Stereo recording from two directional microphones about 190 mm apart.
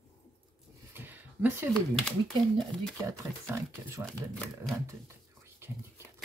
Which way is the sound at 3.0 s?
15° right (ahead or behind).